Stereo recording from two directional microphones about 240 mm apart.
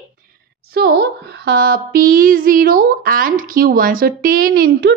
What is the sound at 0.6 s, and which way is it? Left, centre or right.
A woman's voice, right.